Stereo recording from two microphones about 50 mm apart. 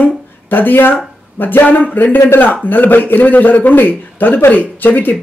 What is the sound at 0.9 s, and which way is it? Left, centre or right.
Speech, left.